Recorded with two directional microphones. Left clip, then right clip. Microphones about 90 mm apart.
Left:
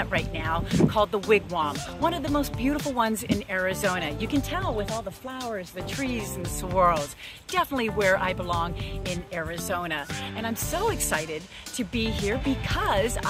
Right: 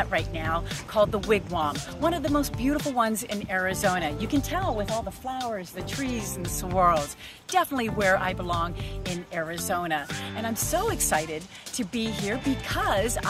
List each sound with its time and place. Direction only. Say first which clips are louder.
0.0 s speech: right 1 dB; 40° left (ahead or behind)
1.3 s speech: left 2 dB; 35° left (ahead or behind)
4.8 s speech: right 2 dB; centre (ahead or behind)
6.8 s speech: even; 40° left (ahead or behind)